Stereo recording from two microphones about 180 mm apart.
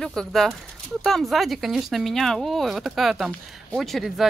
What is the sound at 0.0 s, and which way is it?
A woman's voice, 5° left (ahead or behind).